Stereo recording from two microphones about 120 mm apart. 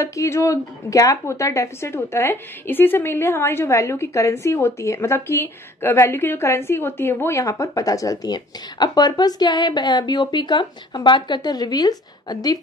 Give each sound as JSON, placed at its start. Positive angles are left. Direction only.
{"t": 0.0, "sound": "a woman's voice", "side_deg": 25}